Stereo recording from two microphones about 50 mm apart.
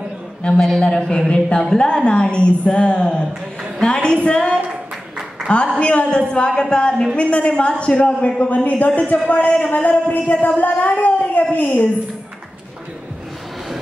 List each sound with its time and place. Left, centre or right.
0.4 s a woman's voice: centre
5.8 s a woman's voice: left